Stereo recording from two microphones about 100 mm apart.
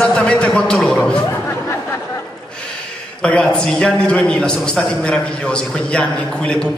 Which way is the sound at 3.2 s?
10° left (ahead or behind).